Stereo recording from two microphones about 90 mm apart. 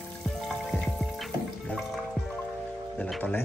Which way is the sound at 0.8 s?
Centre (ahead or behind).